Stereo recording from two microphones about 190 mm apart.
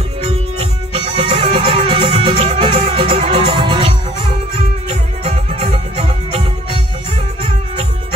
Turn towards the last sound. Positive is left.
turn(degrees=-30)  # may be behind; listen again after turning